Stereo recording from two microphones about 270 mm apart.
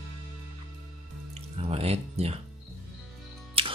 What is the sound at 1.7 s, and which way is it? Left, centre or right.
Speech, right.